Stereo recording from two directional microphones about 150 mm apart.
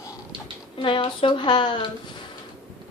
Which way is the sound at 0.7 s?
35° left (ahead or behind).